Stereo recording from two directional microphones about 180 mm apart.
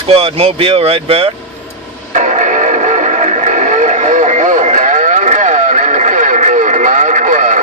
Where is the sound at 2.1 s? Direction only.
40° right (ahead or behind).